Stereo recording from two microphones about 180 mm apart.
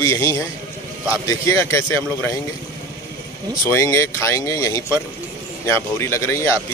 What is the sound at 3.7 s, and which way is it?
A man's voice, 15° left (ahead or behind).